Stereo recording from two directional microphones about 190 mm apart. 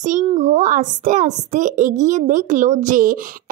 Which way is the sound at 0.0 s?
40° right (ahead or behind).